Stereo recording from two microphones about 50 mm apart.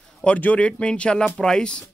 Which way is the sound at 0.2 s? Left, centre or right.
Left.